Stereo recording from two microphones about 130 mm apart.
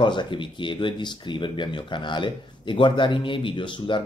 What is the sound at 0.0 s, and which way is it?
Speech, 40° left (ahead or behind).